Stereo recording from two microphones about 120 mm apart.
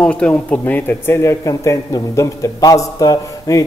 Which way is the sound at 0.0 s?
10° left (ahead or behind).